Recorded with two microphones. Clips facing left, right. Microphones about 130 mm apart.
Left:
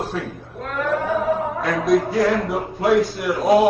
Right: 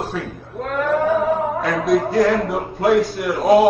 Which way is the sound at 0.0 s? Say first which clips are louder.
Even; 10° right (ahead or behind).